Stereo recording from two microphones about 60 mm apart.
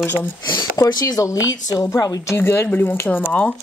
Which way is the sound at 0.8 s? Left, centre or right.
Left.